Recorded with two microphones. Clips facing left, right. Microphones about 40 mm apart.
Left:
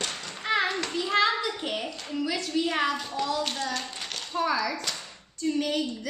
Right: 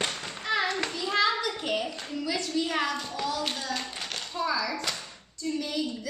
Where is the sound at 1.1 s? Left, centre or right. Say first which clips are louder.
Left 1 dB; left.